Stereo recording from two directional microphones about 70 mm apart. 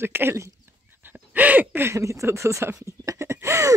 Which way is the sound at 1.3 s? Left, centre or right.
Right.